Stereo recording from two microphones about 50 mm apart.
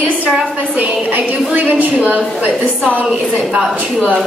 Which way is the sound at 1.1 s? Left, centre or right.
Right.